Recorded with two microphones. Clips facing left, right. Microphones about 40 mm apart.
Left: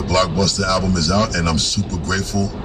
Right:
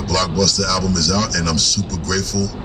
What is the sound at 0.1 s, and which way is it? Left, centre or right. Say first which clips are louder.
Speech: left 1 dB; left.